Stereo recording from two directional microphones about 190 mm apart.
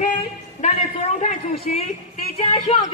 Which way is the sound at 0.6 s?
40° left (ahead or behind).